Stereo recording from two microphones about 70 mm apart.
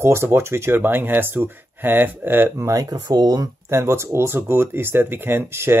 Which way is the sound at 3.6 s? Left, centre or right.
Right.